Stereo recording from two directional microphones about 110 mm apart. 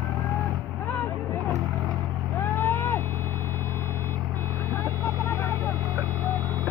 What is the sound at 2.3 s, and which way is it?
Vehicle, 20° left (ahead or behind).